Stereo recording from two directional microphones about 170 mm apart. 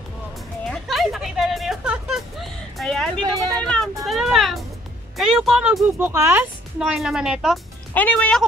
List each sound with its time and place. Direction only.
0.7 s a sound: centre (ahead or behind)
4.0 s music: centre (ahead or behind)
5.1 s speech: centre (ahead or behind)
6.8 s speech: centre (ahead or behind)
7.9 s speech: 10° left (ahead or behind)